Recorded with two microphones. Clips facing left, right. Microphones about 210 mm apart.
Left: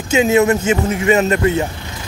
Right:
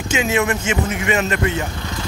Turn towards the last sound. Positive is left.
turn(degrees=35)  # may be behind; listen again after turning